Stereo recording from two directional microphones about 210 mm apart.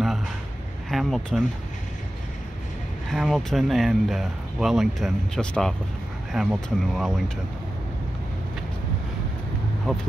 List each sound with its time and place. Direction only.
0.8 s speech: centre (ahead or behind)
3.1 s speech: centre (ahead or behind)